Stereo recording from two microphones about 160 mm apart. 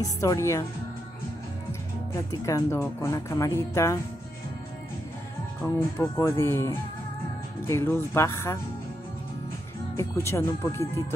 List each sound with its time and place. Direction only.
0.0 s a woman's voice: 20° left (ahead or behind)
1.7 s speech: 20° left (ahead or behind)
5.6 s speech: 15° left (ahead or behind)
9.9 s speech: 15° left (ahead or behind)